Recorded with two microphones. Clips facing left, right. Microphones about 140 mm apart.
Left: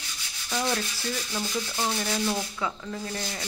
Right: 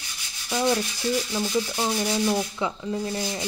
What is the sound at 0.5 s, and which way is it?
Rub, 15° right (ahead or behind).